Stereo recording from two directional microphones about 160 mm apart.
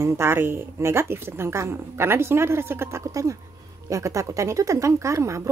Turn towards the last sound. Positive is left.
turn(degrees=-20)  # may be behind; listen again after turning